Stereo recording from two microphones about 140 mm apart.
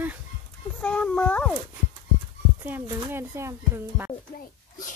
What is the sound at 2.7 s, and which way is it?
Speech, 15° right (ahead or behind).